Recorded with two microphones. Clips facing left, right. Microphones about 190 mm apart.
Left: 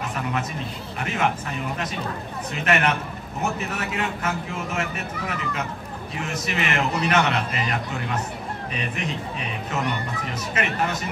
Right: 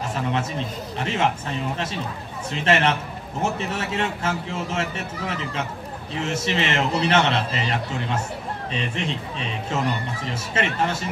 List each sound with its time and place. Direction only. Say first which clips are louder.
0.1 s speech: right 2 dB; 30° right (ahead or behind)
2.5 s speech: right 2 dB; 30° right (ahead or behind)